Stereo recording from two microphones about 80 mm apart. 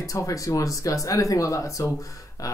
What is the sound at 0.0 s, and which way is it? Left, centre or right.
Speech, left.